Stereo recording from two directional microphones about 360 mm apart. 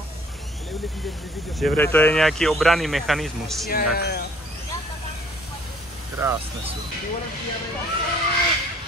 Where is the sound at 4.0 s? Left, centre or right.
Left.